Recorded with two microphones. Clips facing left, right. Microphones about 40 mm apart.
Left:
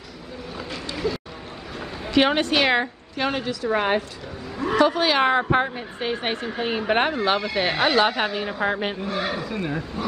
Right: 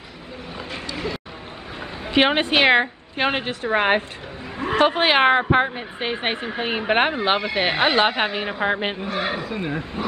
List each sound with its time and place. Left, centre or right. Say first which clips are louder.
0.6 s a sound: right 1 dB; right
1.8 s a woman's voice: right 1 dB; right
5.4 s speech: right 2 dB; right